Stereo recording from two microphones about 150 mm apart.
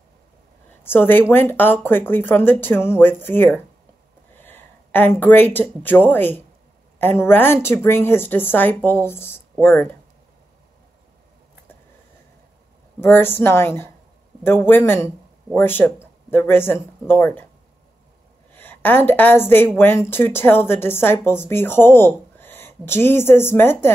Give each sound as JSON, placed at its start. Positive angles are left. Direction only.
{"t": 0.8, "sound": "a woman's voice", "side_deg": 15}
{"t": 13.0, "sound": "a woman's voice", "side_deg": 15}
{"t": 18.5, "sound": "a woman's voice", "side_deg": 10}